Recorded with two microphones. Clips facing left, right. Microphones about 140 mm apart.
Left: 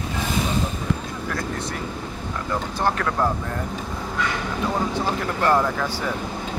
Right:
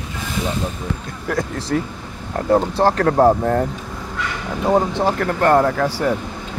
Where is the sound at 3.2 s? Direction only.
60° right (ahead or behind).